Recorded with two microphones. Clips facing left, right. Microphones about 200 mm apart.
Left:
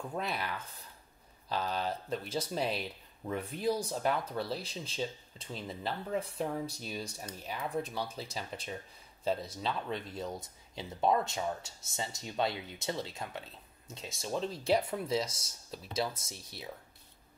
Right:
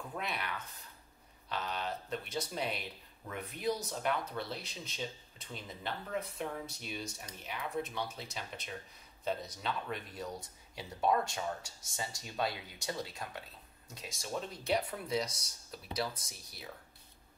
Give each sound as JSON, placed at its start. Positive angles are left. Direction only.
{"t": 0.2, "sound": "speech", "side_deg": 35}